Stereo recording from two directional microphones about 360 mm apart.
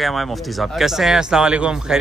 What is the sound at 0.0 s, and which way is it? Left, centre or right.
A man's voice, centre.